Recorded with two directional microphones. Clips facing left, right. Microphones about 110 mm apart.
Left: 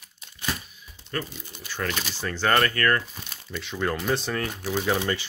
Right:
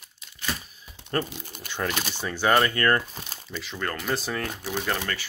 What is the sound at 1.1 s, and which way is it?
Speech, 40° right (ahead or behind).